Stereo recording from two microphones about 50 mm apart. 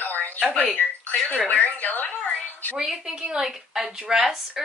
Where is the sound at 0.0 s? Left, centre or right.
Left.